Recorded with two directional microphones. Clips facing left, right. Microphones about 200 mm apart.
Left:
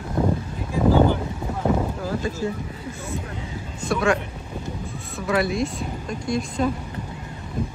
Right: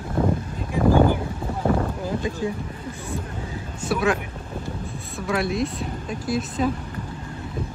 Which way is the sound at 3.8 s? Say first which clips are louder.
Left 1 dB; 5° right (ahead or behind).